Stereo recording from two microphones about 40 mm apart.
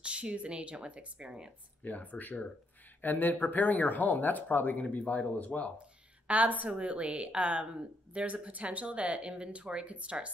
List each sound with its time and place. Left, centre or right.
0.0 s speech: right
1.9 s speech: left
6.2 s speech: right